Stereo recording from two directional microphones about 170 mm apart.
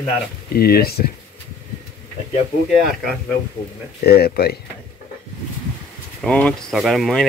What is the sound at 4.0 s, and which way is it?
Speech, 65° left (ahead or behind).